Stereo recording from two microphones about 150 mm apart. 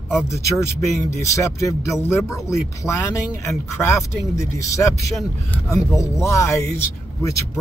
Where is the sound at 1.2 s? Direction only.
20° left (ahead or behind).